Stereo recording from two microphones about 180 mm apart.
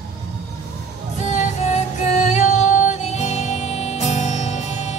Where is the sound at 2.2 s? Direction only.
40° left (ahead or behind).